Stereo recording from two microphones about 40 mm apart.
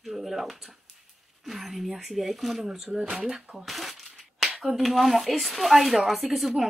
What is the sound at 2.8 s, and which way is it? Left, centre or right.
Speech, right.